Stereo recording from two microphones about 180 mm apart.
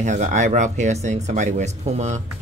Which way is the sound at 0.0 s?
40° right (ahead or behind).